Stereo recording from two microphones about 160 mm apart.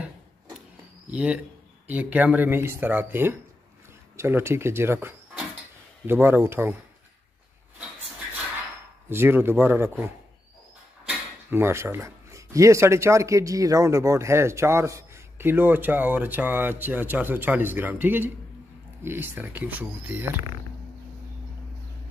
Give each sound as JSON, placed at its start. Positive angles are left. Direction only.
{"t": 1.1, "sound": "speech", "side_deg": -10}
{"t": 9.1, "sound": "speech", "side_deg": -15}
{"t": 11.1, "sound": "speech", "side_deg": -15}